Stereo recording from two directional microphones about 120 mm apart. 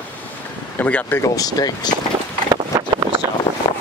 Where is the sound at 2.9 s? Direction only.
35° right (ahead or behind).